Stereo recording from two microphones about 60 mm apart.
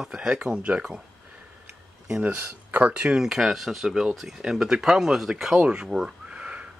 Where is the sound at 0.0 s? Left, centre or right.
Centre.